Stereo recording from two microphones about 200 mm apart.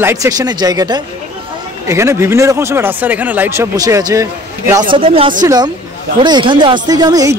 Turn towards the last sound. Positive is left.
turn(degrees=-20)  # may be behind; listen again after turning